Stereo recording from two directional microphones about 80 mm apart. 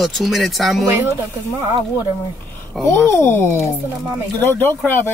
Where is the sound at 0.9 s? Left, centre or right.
Right.